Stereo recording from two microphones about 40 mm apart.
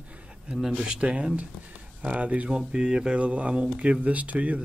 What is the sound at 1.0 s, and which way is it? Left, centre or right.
Speech, right.